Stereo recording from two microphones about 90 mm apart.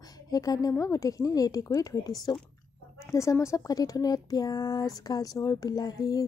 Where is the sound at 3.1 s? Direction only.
35° left (ahead or behind).